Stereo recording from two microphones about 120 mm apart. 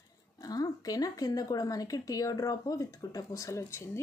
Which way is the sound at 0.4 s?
30° left (ahead or behind).